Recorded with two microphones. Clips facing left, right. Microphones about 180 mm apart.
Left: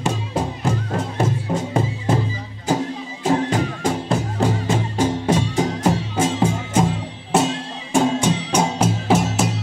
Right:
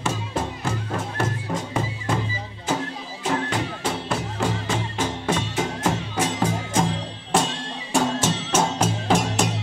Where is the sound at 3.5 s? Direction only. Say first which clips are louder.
Left 5 dB; 45° left (ahead or behind).